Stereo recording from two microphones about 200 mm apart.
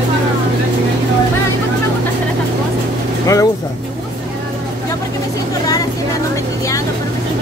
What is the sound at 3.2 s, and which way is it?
Vehicle, 15° left (ahead or behind).